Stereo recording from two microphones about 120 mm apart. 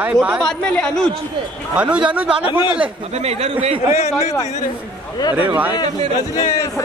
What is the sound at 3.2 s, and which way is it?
Speech, 60° right (ahead or behind).